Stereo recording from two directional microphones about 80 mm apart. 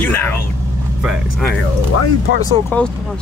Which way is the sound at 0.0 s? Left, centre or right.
Left.